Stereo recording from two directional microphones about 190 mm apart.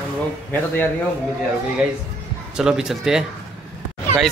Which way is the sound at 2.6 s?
5° right (ahead or behind).